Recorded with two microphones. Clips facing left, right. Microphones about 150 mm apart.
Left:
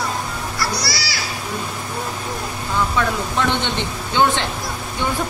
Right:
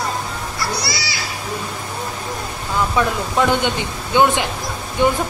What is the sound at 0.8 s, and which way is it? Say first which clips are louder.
Children playing: right 1 dB; 20° right (ahead or behind).